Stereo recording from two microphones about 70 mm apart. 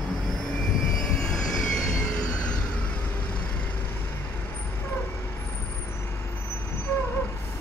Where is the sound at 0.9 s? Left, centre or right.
Centre.